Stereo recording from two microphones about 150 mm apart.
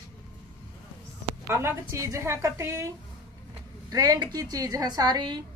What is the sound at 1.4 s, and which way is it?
A woman's voice, 15° right (ahead or behind).